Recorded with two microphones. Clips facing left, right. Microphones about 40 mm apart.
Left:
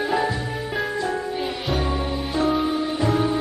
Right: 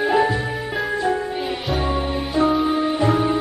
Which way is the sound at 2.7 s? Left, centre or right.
Right.